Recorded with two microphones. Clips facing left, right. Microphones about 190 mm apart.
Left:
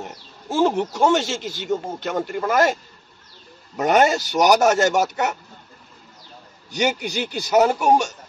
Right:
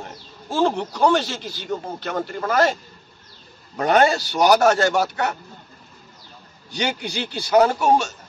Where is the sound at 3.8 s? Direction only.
15° left (ahead or behind).